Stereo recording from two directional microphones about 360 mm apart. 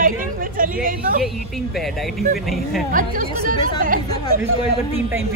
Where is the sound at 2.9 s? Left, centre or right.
Right.